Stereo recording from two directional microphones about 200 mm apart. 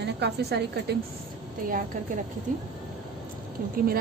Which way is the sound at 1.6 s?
40° right (ahead or behind).